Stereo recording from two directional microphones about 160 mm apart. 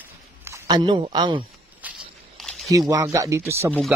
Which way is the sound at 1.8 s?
10° right (ahead or behind).